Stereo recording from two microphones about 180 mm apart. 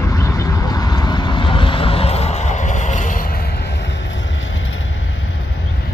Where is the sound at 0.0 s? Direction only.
15° left (ahead or behind); by 3.5 s 55° left (ahead or behind).